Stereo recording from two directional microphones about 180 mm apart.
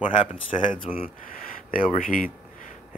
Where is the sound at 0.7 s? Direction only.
50° left (ahead or behind).